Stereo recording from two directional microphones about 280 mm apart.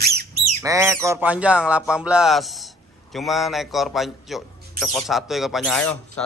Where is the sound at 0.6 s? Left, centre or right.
Centre.